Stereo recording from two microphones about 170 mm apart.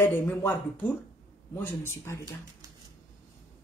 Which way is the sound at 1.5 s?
15° left (ahead or behind).